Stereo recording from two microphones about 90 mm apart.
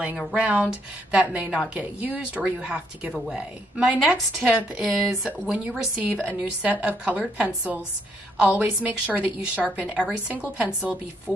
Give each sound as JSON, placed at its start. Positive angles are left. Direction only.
{"t": 0.4, "sound": "speech", "side_deg": -10}
{"t": 11.3, "sound": "speech", "side_deg": -5}